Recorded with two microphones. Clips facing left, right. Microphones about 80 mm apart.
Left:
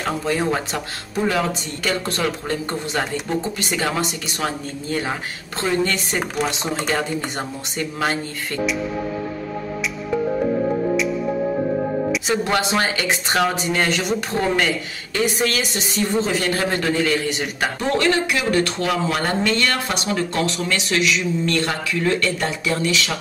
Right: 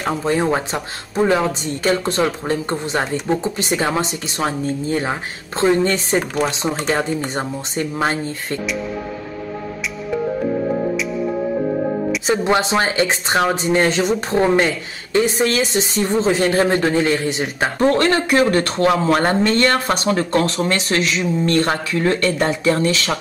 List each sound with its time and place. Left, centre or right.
0.0 s a man's voice: right
12.3 s speech: right
17.8 s a man's voice: right